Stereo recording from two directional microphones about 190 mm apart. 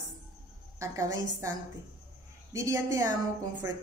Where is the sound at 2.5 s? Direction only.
15° right (ahead or behind).